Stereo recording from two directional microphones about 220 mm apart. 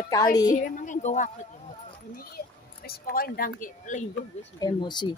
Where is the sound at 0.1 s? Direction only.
15° left (ahead or behind).